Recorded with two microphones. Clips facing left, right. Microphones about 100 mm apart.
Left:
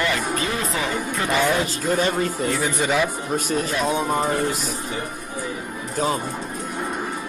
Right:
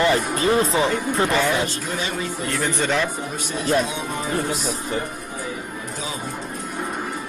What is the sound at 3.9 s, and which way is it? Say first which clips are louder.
Music: left 5 dB; 45° left (ahead or behind).